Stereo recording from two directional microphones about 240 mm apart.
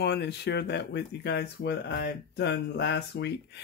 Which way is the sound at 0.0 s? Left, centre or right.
Left.